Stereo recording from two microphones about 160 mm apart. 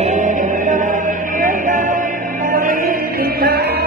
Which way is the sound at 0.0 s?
50° right (ahead or behind).